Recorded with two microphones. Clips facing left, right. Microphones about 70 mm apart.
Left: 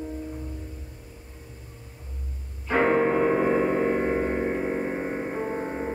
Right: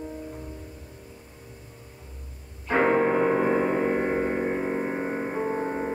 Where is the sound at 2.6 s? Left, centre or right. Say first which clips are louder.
Even; centre.